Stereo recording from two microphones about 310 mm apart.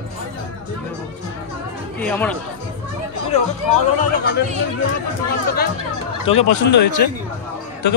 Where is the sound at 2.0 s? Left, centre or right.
Centre.